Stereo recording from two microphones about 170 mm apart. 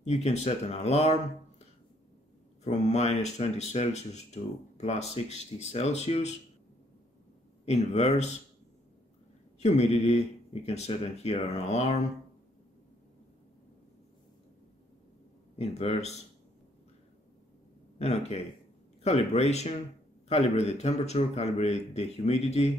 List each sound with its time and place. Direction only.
0.0 s speech: 40° left (ahead or behind)
2.6 s speech: 40° left (ahead or behind)
7.6 s speech: 40° left (ahead or behind)
9.6 s speech: 40° left (ahead or behind)
15.5 s speech: 40° left (ahead or behind)
17.9 s speech: 40° left (ahead or behind)